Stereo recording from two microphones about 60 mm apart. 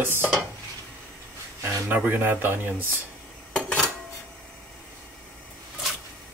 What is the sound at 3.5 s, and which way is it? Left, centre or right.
Dishes, centre.